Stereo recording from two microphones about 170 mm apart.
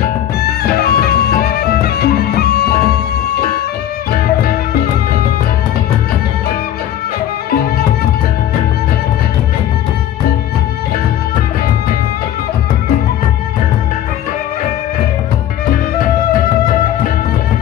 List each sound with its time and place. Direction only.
0.4 s music: 65° left (ahead or behind)